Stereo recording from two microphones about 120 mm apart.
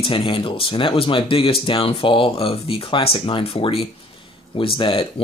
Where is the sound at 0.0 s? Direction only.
45° left (ahead or behind).